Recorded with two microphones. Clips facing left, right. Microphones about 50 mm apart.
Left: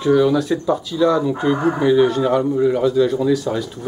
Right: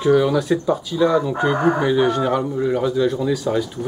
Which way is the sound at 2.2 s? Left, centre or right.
Centre.